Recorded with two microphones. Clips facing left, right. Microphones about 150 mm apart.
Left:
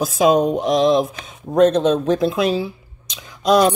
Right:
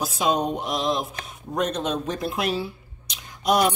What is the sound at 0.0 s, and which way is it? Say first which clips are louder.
Speech: left 8 dB; 90° left.